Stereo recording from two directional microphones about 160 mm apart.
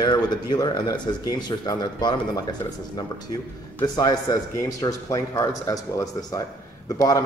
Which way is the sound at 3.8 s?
25° left (ahead or behind).